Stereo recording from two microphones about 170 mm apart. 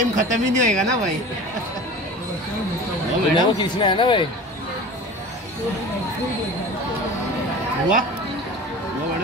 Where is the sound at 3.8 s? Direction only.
30° left (ahead or behind).